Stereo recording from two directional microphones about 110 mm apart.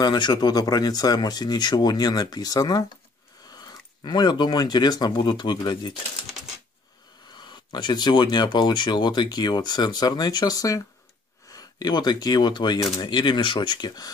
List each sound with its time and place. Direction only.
0.0 s speech: 40° left (ahead or behind)
7.3 s speech: 40° left (ahead or behind)